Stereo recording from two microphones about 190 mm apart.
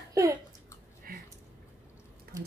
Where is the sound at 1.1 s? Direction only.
50° right (ahead or behind).